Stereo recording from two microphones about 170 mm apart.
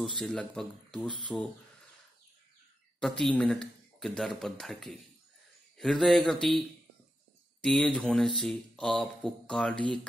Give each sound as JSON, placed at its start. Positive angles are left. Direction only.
{"t": 0.0, "sound": "speech", "side_deg": 5}
{"t": 3.0, "sound": "speech", "side_deg": 5}
{"t": 7.6, "sound": "speech", "side_deg": 0}